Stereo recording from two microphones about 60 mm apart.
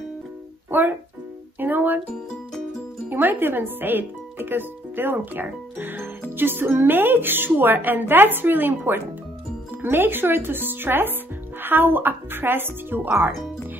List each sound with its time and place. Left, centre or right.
0.7 s music: right
3.1 s speech: right